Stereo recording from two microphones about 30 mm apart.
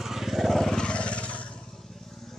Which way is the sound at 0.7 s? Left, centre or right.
Left.